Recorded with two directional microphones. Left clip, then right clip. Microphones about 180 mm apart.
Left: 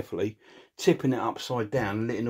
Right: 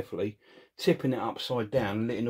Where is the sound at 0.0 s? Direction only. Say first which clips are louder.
Left 2 dB; 40° left (ahead or behind).